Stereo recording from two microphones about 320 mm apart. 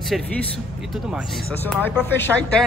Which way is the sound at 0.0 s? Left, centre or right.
Centre.